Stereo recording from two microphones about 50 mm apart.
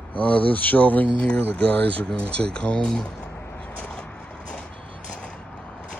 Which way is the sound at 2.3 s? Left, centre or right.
Left.